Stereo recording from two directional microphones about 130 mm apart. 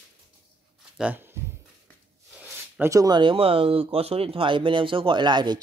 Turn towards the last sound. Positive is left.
turn(degrees=-35)  # may be behind; listen again after turning